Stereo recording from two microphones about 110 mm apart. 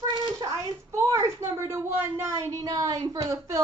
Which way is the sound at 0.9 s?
25° right (ahead or behind).